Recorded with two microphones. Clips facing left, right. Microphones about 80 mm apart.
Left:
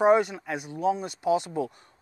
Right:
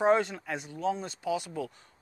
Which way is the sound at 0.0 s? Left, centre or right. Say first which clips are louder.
Left 4 dB; centre.